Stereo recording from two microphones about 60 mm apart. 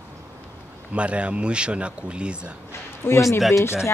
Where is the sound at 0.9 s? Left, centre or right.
Centre.